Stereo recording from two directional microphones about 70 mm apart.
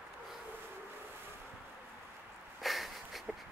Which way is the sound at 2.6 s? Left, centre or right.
Centre.